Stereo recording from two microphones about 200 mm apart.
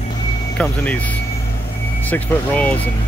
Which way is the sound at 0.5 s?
5° left (ahead or behind).